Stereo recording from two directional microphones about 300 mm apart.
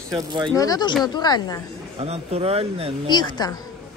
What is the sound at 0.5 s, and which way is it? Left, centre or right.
Speech, centre.